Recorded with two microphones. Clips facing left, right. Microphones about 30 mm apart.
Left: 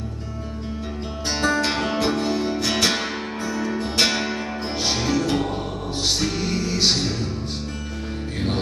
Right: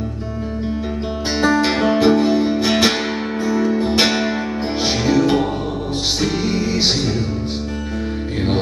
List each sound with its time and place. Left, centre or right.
1.4 s music: centre